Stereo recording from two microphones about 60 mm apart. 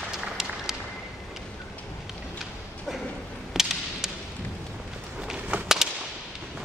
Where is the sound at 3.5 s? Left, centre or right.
Centre.